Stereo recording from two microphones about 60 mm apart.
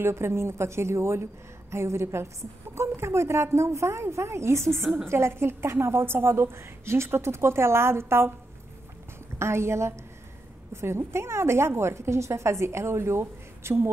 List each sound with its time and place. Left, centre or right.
0.0 s a woman's voice: right
9.4 s a woman's voice: right